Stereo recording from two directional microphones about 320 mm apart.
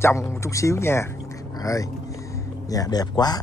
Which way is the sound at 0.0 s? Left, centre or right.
Centre.